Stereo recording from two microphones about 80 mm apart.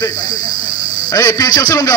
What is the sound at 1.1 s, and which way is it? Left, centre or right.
Speech, left.